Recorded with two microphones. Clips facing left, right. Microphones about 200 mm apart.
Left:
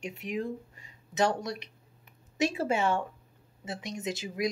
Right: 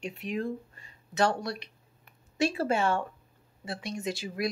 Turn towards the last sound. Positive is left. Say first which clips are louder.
# even
turn(degrees=15)  # may be behind; listen again after turning